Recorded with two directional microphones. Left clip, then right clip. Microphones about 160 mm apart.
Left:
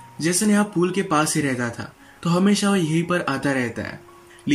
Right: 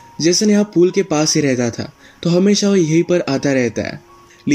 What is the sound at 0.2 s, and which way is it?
Speech, 30° right (ahead or behind).